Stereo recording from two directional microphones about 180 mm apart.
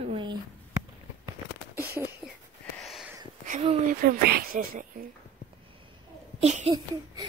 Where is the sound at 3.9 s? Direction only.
50° right (ahead or behind).